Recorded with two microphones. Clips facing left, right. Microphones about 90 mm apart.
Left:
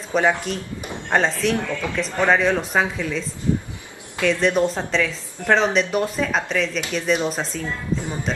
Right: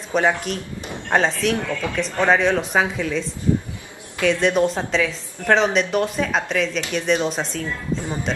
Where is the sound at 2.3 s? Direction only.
Centre (ahead or behind).